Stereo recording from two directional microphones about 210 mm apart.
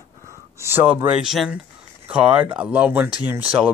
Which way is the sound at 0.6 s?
10° right (ahead or behind).